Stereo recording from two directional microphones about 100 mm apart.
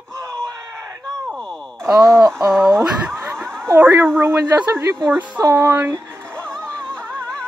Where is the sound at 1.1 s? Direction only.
10° left (ahead or behind).